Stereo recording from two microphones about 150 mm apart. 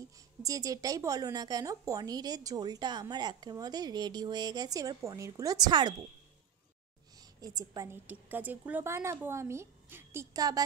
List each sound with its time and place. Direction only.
0.4 s speech: 25° right (ahead or behind)
7.2 s a woman's voice: 25° right (ahead or behind)